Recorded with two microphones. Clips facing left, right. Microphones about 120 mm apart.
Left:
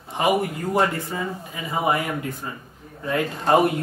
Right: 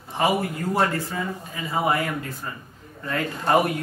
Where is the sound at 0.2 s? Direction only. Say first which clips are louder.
Left 1 dB; 20° left (ahead or behind).